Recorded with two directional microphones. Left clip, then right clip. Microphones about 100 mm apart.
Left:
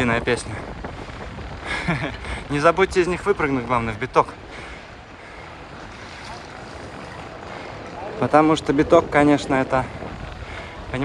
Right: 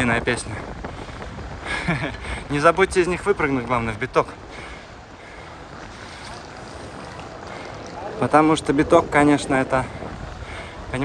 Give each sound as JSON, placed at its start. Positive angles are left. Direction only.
{"t": 0.3, "sound": "speech", "side_deg": -20}
{"t": 1.7, "sound": "speech", "side_deg": -30}
{"t": 2.7, "sound": "speech", "side_deg": -35}
{"t": 3.1, "sound": "speech", "side_deg": -15}
{"t": 3.6, "sound": "speech", "side_deg": -30}
{"t": 8.2, "sound": "speech", "side_deg": -35}